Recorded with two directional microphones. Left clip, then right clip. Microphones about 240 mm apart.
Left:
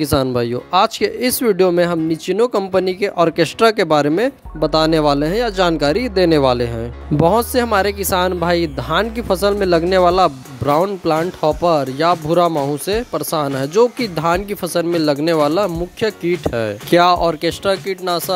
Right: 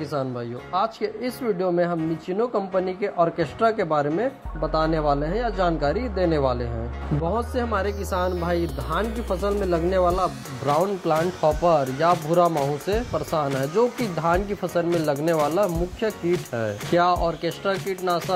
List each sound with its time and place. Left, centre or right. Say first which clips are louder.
0.0 s speech: left 11 dB; left